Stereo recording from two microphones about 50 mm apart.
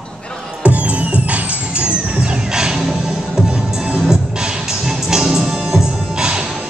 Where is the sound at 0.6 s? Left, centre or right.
Right; by 2.9 s centre.